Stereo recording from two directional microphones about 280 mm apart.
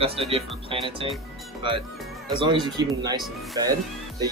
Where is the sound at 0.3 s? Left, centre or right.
Centre.